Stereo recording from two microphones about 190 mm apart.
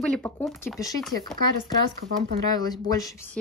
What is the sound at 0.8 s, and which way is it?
Speech, 20° left (ahead or behind).